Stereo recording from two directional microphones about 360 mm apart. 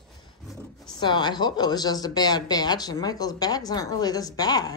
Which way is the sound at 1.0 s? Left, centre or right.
Centre.